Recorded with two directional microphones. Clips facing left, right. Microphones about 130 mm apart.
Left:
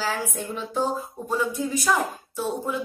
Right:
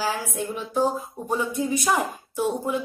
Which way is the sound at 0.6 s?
15° right (ahead or behind).